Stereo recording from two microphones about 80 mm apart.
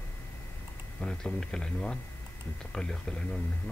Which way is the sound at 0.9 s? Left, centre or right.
Centre.